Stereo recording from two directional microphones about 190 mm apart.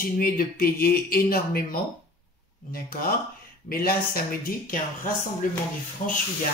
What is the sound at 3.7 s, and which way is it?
Speech, 50° left (ahead or behind).